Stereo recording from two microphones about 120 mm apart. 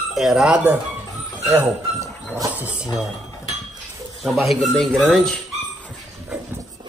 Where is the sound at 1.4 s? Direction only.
20° right (ahead or behind).